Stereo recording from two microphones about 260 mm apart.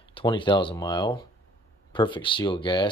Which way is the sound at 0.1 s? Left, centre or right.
Centre.